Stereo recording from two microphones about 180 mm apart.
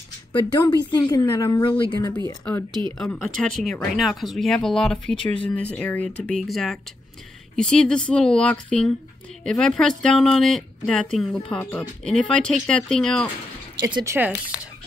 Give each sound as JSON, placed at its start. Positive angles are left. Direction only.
{"t": 0.3, "sound": "speech", "side_deg": 25}
{"t": 2.0, "sound": "speech", "side_deg": 15}
{"t": 13.9, "sound": "speech", "side_deg": -15}